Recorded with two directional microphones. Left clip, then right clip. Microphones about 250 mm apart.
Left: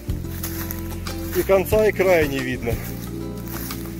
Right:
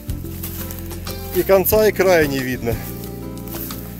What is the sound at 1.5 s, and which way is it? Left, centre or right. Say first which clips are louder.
Speech: right 3 dB; right.